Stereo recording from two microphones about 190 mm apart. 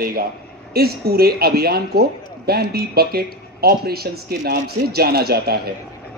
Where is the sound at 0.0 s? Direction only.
50° right (ahead or behind).